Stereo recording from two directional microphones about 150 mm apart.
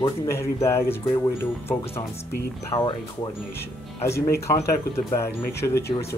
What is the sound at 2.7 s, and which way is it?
Speech, 35° left (ahead or behind).